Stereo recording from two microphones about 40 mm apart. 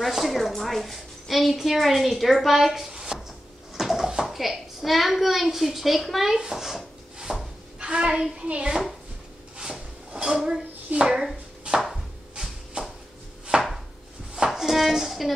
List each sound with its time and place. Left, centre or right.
0.0 s a woman's voice: centre
3.7 s a sound: centre
4.2 s a woman's voice: centre
7.8 s a woman's voice: right
8.5 s speech: right
10.1 s speech: centre
11.7 s chopping: right
12.8 s a sound: right
13.5 s chopping: right
14.5 s a sound: centre